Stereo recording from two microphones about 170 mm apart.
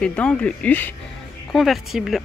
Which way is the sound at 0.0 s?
5° left (ahead or behind).